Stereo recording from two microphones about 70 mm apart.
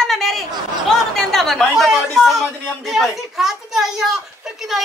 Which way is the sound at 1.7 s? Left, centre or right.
Centre.